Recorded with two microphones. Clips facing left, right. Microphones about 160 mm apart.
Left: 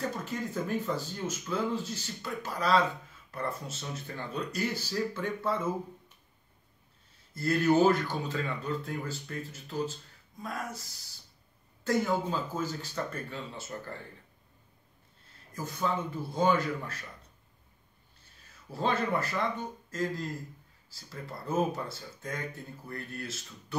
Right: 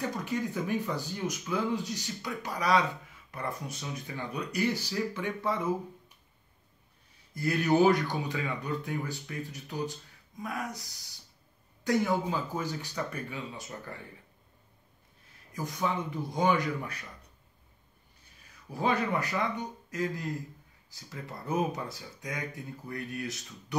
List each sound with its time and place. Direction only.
0.2 s speech: 15° right (ahead or behind)
7.3 s speech: 15° right (ahead or behind)
15.5 s speech: 15° right (ahead or behind)
18.7 s speech: 15° right (ahead or behind)
22.8 s speech: 15° right (ahead or behind)